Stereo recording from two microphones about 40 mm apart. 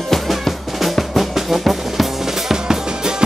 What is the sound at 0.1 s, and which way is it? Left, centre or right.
Music, centre.